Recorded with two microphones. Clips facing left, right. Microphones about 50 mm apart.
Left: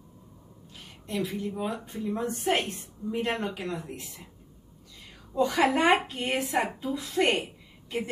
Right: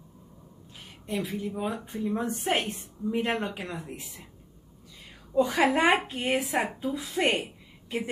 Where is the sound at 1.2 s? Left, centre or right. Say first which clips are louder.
Left 2 dB; centre.